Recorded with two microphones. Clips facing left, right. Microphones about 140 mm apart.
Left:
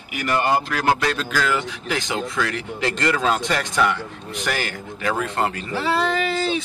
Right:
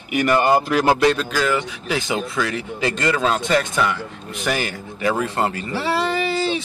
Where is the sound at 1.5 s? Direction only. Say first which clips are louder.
Right 2 dB; 5° right (ahead or behind).